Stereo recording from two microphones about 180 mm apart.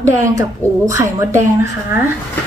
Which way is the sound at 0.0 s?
15° right (ahead or behind).